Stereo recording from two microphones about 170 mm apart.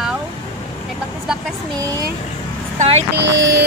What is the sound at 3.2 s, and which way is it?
Speech, 90° right.